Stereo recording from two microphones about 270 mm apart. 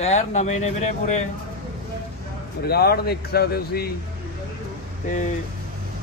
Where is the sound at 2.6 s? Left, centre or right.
Left.